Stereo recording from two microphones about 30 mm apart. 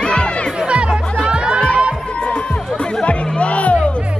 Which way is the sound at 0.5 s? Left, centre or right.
Right.